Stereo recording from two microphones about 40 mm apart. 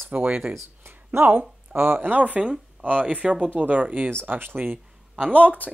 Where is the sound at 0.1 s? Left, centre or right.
Right.